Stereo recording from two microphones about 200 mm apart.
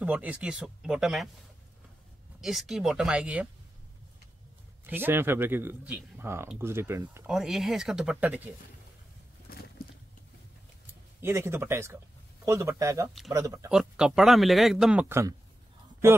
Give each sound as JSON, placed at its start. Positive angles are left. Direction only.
{"t": 0.0, "sound": "speech", "side_deg": -5}
{"t": 2.4, "sound": "speech", "side_deg": 0}
{"t": 4.8, "sound": "speech", "side_deg": -10}
{"t": 7.2, "sound": "speech", "side_deg": 0}
{"t": 9.5, "sound": "a sound", "side_deg": 45}
{"t": 11.1, "sound": "speech", "side_deg": -15}
{"t": 13.7, "sound": "speech", "side_deg": -5}